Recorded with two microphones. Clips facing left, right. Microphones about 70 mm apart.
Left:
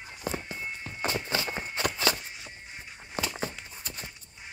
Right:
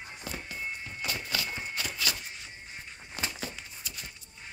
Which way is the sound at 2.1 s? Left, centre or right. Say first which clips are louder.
Left 4 dB; left.